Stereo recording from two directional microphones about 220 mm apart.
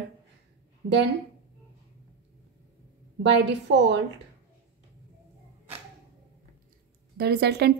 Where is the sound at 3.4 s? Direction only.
50° right (ahead or behind).